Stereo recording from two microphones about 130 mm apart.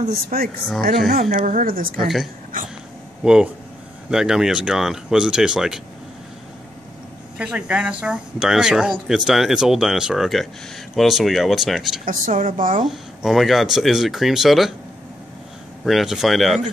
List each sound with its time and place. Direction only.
0.3 s a woman's voice: 90° right
0.7 s speech: centre (ahead or behind)
1.3 s a woman's voice: 75° right (ahead or behind)
4.1 s speech: 5° right (ahead or behind)
7.3 s speech: 10° right (ahead or behind)
12.0 s a woman's voice: 85° right
12.8 s speech: centre (ahead or behind)
15.8 s speech: centre (ahead or behind)